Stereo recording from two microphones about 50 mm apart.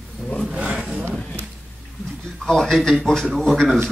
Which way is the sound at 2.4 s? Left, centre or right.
Centre.